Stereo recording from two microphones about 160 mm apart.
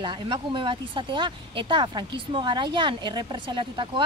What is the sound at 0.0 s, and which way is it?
Speech, 30° right (ahead or behind).